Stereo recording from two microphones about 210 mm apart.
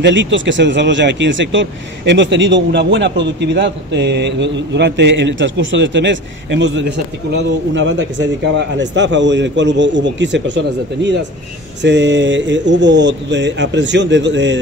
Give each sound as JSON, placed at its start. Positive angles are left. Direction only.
{"t": 0.0, "sound": "speech", "side_deg": -60}